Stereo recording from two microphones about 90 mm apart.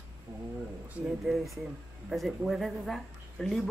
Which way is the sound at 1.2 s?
Centre (ahead or behind).